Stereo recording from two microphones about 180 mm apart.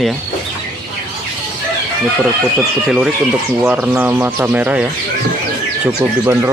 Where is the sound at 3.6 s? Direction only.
5° right (ahead or behind).